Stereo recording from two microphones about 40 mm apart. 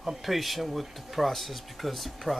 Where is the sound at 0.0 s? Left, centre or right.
Centre.